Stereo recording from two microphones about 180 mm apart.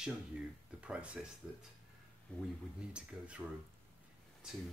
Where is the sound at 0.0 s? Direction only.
5° right (ahead or behind).